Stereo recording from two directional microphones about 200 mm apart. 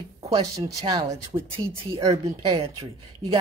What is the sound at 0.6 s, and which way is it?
Speech, 15° right (ahead or behind).